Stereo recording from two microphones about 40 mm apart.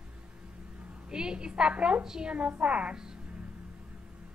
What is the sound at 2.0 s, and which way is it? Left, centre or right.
Speech, centre.